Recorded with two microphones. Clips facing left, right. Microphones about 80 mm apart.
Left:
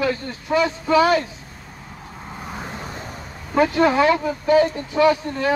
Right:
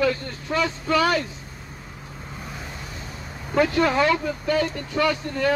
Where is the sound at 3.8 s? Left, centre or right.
Centre.